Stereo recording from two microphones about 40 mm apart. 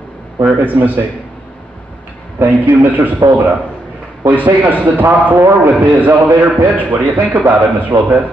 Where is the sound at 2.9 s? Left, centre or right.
Right.